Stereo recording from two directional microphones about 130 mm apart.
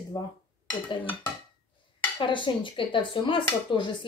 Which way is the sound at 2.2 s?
40° left (ahead or behind).